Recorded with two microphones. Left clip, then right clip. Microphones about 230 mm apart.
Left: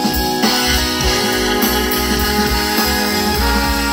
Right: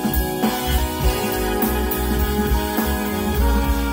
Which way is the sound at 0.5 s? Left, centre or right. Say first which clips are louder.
Left 8 dB; left.